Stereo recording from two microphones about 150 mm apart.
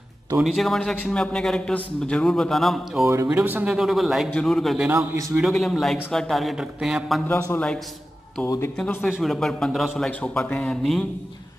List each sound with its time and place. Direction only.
0.4 s a man's voice: centre (ahead or behind)
3.3 s a man's voice: 10° right (ahead or behind)
4.8 s a man's voice: 20° right (ahead or behind)
5.4 s a man's voice: centre (ahead or behind)
7.2 s a man's voice: 15° left (ahead or behind)
8.7 s a man's voice: 5° left (ahead or behind)